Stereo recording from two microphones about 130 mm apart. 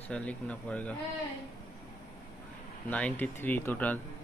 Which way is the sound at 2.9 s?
10° left (ahead or behind).